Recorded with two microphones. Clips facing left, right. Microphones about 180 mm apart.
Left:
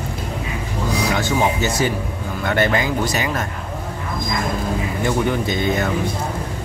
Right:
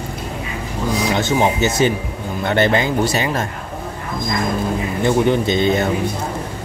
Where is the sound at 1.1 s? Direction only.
20° right (ahead or behind).